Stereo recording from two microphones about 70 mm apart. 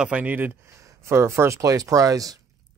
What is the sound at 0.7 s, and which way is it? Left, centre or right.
Speech, right.